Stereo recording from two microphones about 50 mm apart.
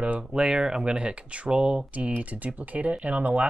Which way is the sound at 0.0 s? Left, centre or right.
Right.